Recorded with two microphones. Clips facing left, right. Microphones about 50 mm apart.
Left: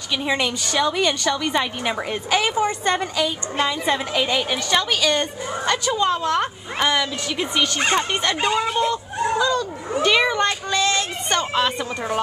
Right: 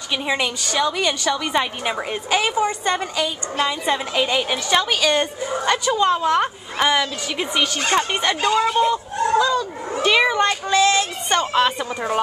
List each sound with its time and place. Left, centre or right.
0.2 s a woman's voice: centre
8.4 s speech: left
8.6 s a woman's voice: centre